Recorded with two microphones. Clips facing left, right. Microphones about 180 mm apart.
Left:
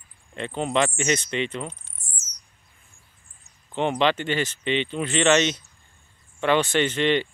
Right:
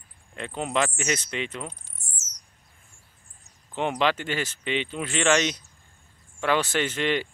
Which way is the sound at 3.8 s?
5° right (ahead or behind).